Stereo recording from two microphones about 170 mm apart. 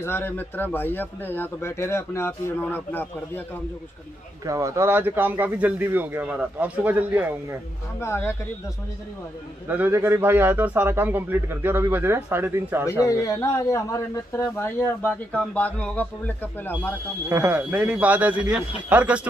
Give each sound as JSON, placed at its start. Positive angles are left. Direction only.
{"t": 0.0, "sound": "a man's voice", "side_deg": 10}
{"t": 4.5, "sound": "a man's voice", "side_deg": -20}
{"t": 8.0, "sound": "a man's voice", "side_deg": 15}
{"t": 9.7, "sound": "a man's voice", "side_deg": -10}
{"t": 13.0, "sound": "a man's voice", "side_deg": 20}
{"t": 17.3, "sound": "a man's voice", "side_deg": -15}